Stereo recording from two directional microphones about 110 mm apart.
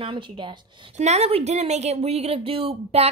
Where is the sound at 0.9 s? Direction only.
85° right.